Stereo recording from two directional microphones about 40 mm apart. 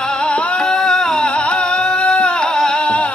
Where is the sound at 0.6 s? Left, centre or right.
Centre.